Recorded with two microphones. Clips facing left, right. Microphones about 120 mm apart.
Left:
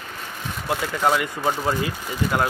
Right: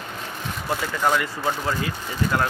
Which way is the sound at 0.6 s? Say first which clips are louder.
Left 2 dB; 5° left (ahead or behind).